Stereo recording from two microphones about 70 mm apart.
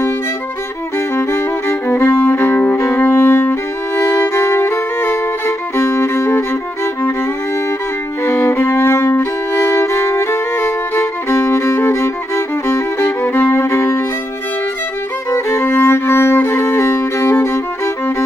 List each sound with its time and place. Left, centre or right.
1.1 s music: left
4.2 s violin: left
5.8 s music: left
8.3 s violin: left
15.3 s music: left